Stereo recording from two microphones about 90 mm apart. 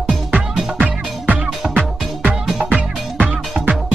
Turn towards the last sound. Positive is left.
turn(degrees=-15)  # may be behind; listen again after turning